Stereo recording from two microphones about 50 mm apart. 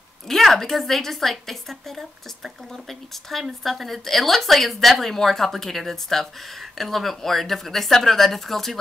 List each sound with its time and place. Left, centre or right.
0.3 s a woman's voice: centre